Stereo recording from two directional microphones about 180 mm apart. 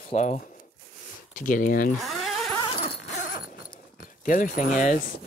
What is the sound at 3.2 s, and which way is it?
Horse, 55° left (ahead or behind).